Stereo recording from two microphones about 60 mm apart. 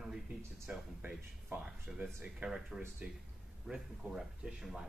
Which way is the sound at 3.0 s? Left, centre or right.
Right.